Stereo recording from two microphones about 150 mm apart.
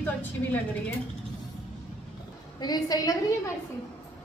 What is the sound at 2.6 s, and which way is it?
Speech, 25° left (ahead or behind).